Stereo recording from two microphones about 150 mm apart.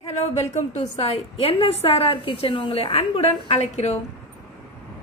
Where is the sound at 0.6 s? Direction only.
45° left (ahead or behind).